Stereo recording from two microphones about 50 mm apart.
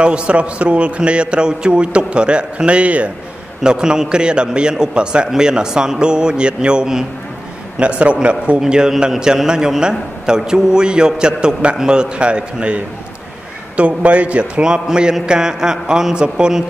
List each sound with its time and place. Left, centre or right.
0.0 s a man's voice: right
3.6 s a man's voice: centre